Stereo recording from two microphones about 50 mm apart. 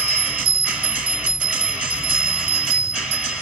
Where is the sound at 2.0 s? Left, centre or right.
Centre.